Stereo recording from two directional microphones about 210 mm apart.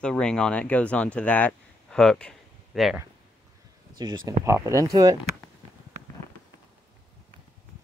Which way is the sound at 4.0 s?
20° right (ahead or behind).